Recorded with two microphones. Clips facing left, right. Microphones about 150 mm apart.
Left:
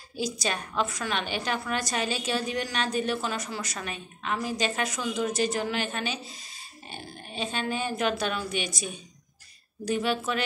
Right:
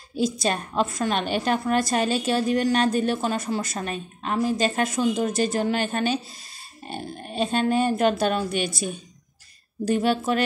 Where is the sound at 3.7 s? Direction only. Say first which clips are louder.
Right 7 dB; 35° right (ahead or behind).